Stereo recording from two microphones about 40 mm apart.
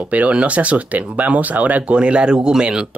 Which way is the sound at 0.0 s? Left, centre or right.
Right.